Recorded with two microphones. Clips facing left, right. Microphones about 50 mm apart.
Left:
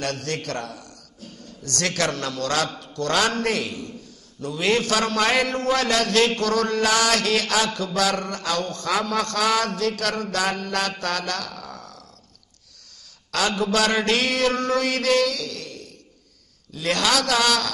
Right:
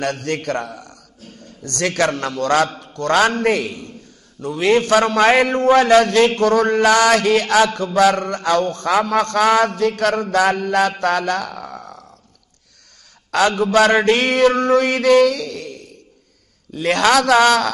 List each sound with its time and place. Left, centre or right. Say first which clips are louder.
0.0 s a man's voice: right 6 dB; right
4.4 s a man's voice: right 6 dB; right
4.7 s a man's voice: right 10 dB; right
10.3 s a sound: right 8 dB; right
13.3 s a man's voice: right 7 dB; right
16.7 s a man's voice: right 7 dB; right